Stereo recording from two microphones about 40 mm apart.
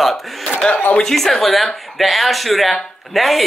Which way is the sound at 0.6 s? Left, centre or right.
Left.